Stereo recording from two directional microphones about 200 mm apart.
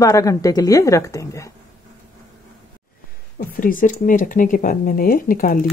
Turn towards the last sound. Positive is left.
turn(degrees=45)  # may be behind; listen again after turning